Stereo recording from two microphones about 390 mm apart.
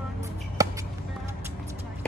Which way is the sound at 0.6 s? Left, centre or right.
Centre.